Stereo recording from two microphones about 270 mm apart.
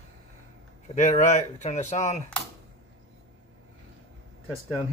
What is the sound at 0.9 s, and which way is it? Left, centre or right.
A man's voice, left.